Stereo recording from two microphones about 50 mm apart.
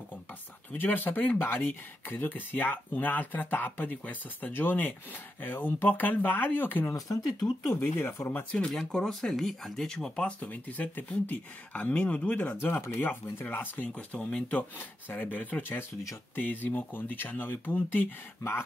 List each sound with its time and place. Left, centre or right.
0.7 s speech: left
8.3 s speech: left
8.7 s speech: centre
10.4 s speech: left
12.9 s speech: left
13.8 s speech: left
14.5 s speech: left
17.9 s speech: left